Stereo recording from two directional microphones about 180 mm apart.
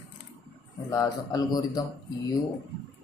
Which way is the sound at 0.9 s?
20° left (ahead or behind).